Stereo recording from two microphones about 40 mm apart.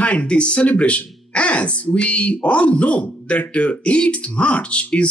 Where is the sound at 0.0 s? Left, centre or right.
Left.